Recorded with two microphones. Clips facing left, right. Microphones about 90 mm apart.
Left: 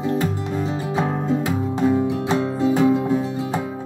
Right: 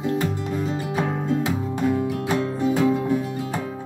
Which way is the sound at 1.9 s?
25° left (ahead or behind).